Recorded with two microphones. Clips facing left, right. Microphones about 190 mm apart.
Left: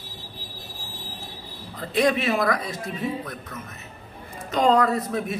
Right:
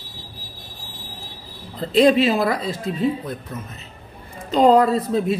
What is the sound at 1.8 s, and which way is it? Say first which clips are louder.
Speech: right 7 dB; 30° right (ahead or behind).